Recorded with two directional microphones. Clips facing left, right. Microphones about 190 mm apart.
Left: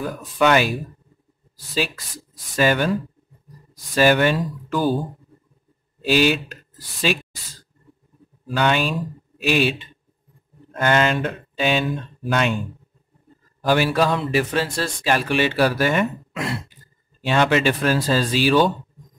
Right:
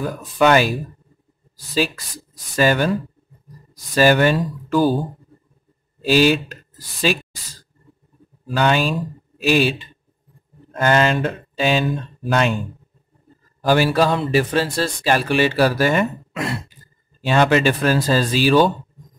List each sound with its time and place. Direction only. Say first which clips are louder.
0.4 s a man's voice: right 2 dB; 40° right (ahead or behind)
2.5 s a man's voice: right 2 dB; 40° right (ahead or behind)
3.9 s a man's voice: right 2 dB; 40° right (ahead or behind)
6.0 s a man's voice: right 3 dB; 35° right (ahead or behind)
8.5 s a man's voice: right 2 dB; 40° right (ahead or behind)
13.6 s a man's voice: right 2 dB; 35° right (ahead or behind)